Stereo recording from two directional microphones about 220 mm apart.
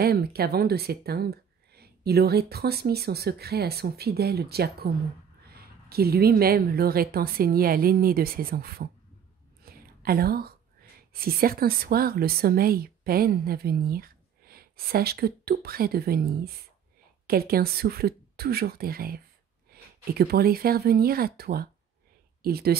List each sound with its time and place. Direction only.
0.0 s speech: 45° right (ahead or behind)